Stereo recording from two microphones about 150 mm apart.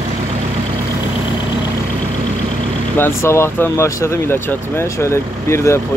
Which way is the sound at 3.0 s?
15° left (ahead or behind).